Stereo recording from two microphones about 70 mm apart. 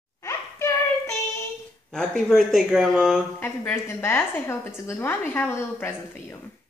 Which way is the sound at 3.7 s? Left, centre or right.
Left.